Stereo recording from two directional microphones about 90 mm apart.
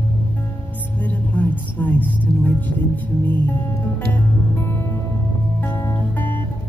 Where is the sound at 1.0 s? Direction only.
15° left (ahead or behind).